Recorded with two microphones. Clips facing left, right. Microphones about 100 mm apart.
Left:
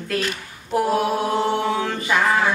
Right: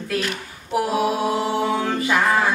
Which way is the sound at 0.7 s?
5° right (ahead or behind).